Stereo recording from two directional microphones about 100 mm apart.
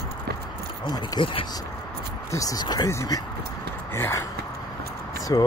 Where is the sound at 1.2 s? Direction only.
55° left (ahead or behind).